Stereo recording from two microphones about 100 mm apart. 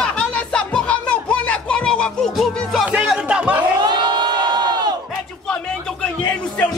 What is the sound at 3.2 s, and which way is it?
Chatter, 10° right (ahead or behind).